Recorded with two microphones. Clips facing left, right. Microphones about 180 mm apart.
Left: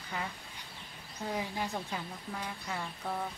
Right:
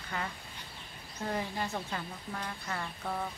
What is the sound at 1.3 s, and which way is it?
Speech, 10° left (ahead or behind).